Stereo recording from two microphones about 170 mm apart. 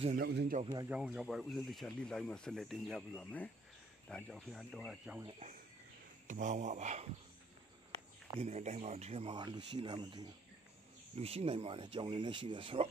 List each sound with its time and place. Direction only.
0.1 s speech: 70° right (ahead or behind)
0.8 s speech: 5° right (ahead or behind)
6.2 s speech: 50° right (ahead or behind)
8.4 s speech: 40° right (ahead or behind)